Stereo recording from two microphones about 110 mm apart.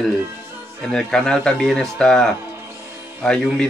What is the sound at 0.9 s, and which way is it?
A man's voice, 5° left (ahead or behind).